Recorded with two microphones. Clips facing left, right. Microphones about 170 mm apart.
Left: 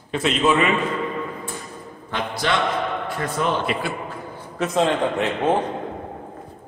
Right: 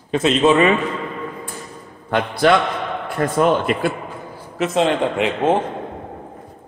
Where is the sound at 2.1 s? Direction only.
55° right (ahead or behind).